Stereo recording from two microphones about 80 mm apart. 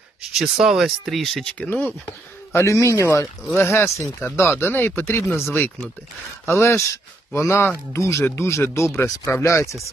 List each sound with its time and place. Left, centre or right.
0.3 s speech: centre
1.7 s speech: left
2.0 s speech: left
3.4 s speech: left